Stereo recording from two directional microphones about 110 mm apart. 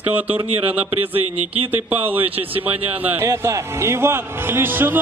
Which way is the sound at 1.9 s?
15° right (ahead or behind).